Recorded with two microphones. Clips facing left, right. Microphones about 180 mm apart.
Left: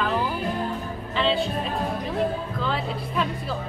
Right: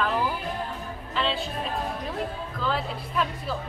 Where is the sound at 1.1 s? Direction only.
Centre (ahead or behind).